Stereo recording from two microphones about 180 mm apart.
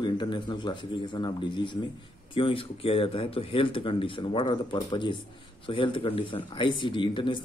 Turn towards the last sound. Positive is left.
turn(degrees=25)  # may be behind; listen again after turning